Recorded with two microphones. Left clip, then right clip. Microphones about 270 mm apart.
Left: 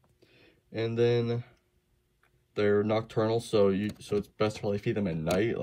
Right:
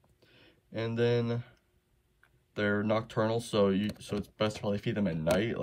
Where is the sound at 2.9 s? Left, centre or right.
Right.